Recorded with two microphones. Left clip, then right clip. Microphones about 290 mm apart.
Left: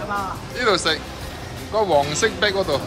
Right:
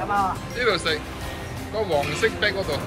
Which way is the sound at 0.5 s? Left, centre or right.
Centre.